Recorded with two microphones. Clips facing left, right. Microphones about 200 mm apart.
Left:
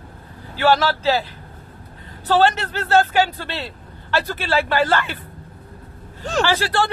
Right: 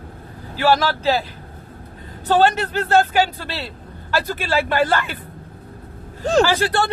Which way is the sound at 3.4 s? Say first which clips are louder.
Even; 35° right (ahead or behind).